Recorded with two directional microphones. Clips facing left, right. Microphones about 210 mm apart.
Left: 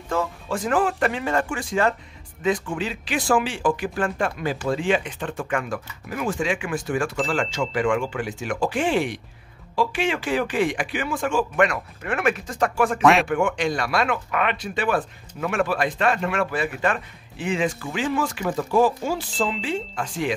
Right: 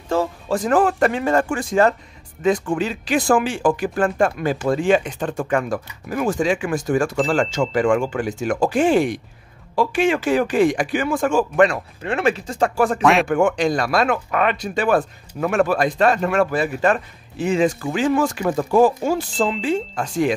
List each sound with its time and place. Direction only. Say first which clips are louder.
0.1 s speech: right 5 dB; 35° right (ahead or behind)
11.6 s speech: right 5 dB; 30° right (ahead or behind)
13.0 s speech: even; centre (ahead or behind)
13.3 s speech: right 5 dB; 45° right (ahead or behind)